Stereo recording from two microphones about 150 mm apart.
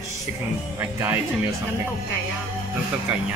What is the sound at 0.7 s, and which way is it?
Speech, 15° right (ahead or behind).